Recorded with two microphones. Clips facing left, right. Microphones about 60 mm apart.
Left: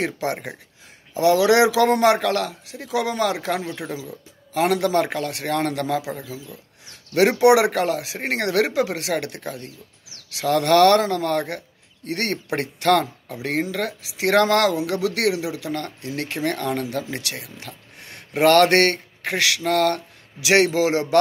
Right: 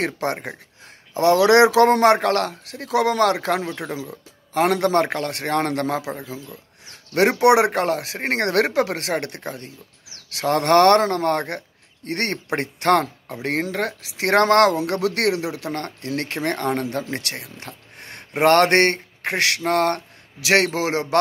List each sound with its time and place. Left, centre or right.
0.0 s a man's voice: right